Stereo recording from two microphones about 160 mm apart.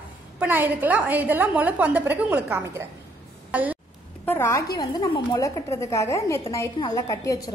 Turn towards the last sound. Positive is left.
turn(degrees=20)  # may be behind; listen again after turning